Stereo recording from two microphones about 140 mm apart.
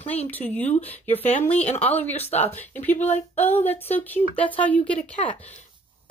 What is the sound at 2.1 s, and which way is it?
Speech, 50° left (ahead or behind).